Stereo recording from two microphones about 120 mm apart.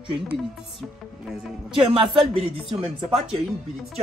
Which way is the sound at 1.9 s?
45° right (ahead or behind).